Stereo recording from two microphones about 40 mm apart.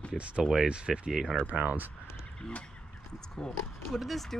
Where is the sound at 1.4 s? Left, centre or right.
Right.